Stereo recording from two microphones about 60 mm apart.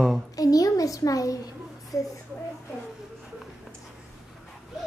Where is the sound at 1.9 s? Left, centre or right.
Left.